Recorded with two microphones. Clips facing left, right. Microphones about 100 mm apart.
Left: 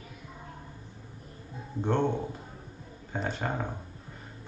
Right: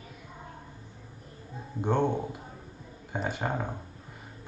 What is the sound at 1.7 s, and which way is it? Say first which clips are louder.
Speech: right 1 dB; 15° right (ahead or behind).